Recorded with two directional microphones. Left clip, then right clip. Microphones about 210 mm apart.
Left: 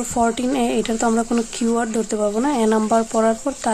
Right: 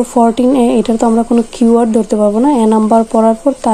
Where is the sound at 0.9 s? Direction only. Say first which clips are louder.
Right 8 dB; 10° left (ahead or behind).